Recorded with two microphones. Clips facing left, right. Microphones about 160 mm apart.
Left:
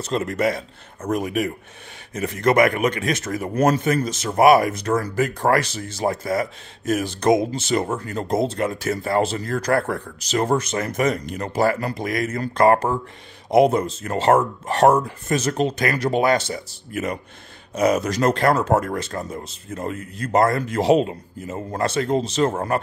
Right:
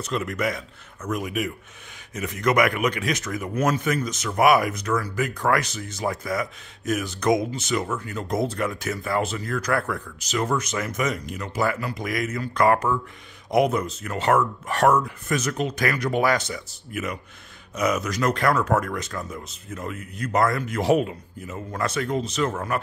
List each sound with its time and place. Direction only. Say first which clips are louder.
0.0 s speech: left 4 dB; 30° left (ahead or behind)
2.7 s a man's voice: left 3 dB; 45° left (ahead or behind)
8.4 s speech: left 3 dB; 25° left (ahead or behind)